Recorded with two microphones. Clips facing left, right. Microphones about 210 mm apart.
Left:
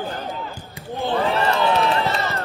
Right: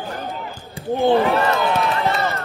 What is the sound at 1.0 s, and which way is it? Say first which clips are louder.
Speech: right 6 dB; 15° right (ahead or behind).